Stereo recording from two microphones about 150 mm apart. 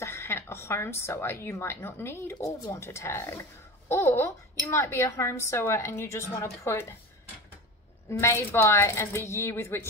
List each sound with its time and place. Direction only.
0.0 s a woman's voice: 20° left (ahead or behind)
8.1 s speech: 20° left (ahead or behind)